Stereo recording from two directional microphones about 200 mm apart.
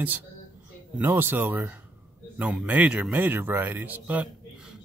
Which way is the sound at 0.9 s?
10° right (ahead or behind).